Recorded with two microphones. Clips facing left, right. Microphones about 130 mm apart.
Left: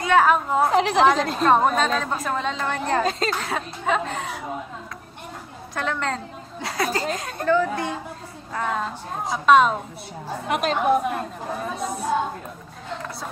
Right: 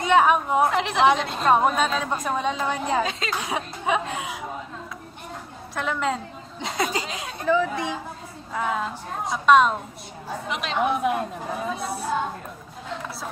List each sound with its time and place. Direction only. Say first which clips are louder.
0.0 s speech: even; 20° right (ahead or behind)
0.7 s a woman's voice: left 4 dB; centre (ahead or behind)
5.8 s a woman's voice: right 1 dB; 5° right (ahead or behind)
6.6 s speech: left 1 dB; 20° right (ahead or behind)
7.4 s a woman's voice: left 1 dB; centre (ahead or behind)
10.5 s a woman's voice: left 4 dB; 45° left (ahead or behind)
11.1 s a woman's voice: right 2 dB; 5° right (ahead or behind)